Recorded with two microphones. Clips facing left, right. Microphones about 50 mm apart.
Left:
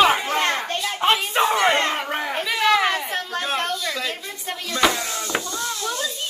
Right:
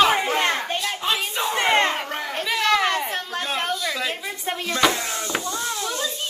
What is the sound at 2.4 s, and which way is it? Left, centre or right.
A woman's voice, centre.